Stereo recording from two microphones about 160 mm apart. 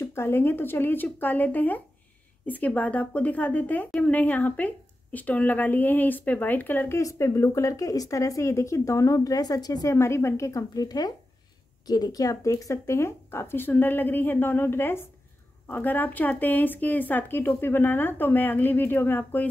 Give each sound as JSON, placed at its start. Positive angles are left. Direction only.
{"t": 0.0, "sound": "a woman's voice", "side_deg": 15}